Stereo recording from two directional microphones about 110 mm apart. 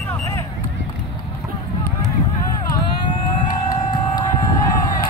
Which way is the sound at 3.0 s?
50° left (ahead or behind).